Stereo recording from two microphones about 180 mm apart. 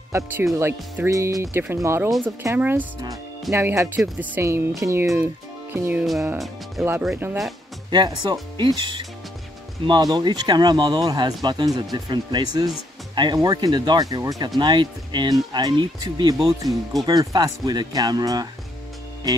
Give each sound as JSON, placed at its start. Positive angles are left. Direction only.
{"t": 0.1, "sound": "speech", "side_deg": -15}
{"t": 7.9, "sound": "speech", "side_deg": -25}